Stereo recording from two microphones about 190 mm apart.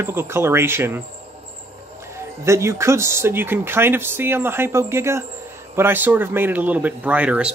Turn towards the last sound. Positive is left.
turn(degrees=-5)  # may be behind; listen again after turning